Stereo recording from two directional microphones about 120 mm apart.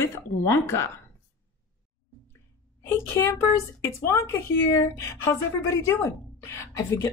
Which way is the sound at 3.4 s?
25° left (ahead or behind).